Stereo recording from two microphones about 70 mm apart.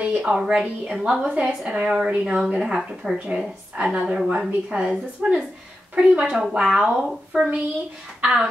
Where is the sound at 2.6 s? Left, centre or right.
Centre.